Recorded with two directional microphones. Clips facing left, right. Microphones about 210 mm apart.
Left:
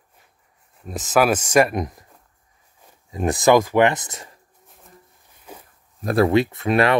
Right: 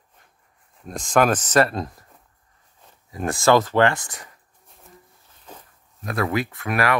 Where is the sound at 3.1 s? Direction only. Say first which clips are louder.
Left 2 dB; 20° left (ahead or behind).